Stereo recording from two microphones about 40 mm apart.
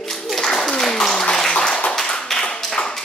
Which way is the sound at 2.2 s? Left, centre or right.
Centre.